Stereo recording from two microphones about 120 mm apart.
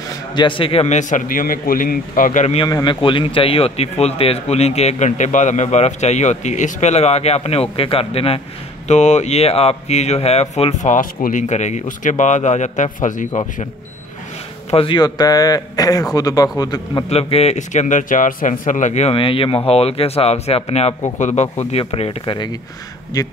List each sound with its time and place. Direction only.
0.3 s a man's voice: 40° left (ahead or behind)
0.8 s speech: 85° left
2.3 s a man's voice: 65° left (ahead or behind)
2.6 s a man's voice: 40° left (ahead or behind)
8.8 s speech: 70° left (ahead or behind); by 13.3 s 90° left
14.7 s speech: 50° left (ahead or behind)
15.0 s speech: 35° left (ahead or behind)
17.1 s speech: 60° left (ahead or behind); by 19.1 s 80° left
19.1 s a man's voice: 50° left (ahead or behind); by 23.3 s 30° left (ahead or behind)